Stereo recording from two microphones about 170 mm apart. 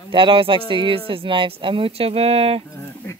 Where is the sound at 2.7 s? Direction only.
15° left (ahead or behind).